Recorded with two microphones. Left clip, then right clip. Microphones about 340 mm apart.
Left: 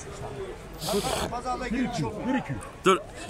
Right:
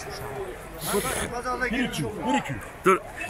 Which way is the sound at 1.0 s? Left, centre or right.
Centre.